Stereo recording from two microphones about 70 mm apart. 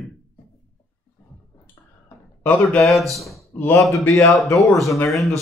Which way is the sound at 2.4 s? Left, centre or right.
Left.